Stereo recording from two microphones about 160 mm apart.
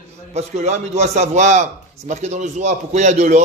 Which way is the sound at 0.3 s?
45° right (ahead or behind).